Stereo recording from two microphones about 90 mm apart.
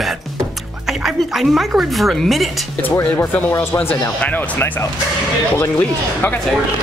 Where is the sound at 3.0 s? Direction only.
20° left (ahead or behind).